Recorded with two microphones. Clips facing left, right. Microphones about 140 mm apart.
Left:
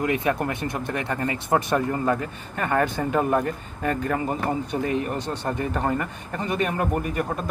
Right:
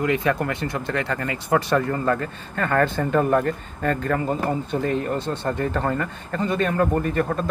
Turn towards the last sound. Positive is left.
turn(degrees=10)  # may be behind; listen again after turning